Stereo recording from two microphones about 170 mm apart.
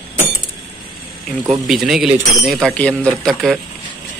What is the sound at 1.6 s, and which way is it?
Speech, centre (ahead or behind).